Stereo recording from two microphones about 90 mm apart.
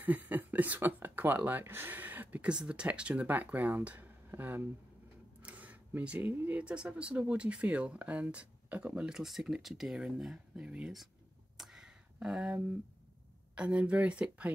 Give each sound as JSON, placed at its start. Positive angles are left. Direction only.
{"t": 0.0, "sound": "speech", "side_deg": -20}
{"t": 9.1, "sound": "speech", "side_deg": -5}
{"t": 11.5, "sound": "a sound", "side_deg": -5}
{"t": 13.6, "sound": "speech", "side_deg": -15}